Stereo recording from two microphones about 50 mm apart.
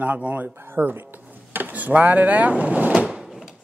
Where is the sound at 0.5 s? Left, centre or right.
Right.